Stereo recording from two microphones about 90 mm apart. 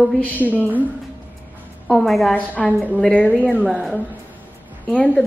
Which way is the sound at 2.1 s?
Centre (ahead or behind).